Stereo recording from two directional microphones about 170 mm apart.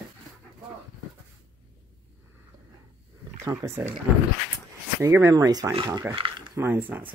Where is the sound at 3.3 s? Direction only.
15° right (ahead or behind).